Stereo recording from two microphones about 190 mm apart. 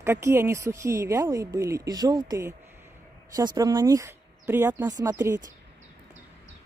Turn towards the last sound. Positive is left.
turn(degrees=-15)  # may be behind; listen again after turning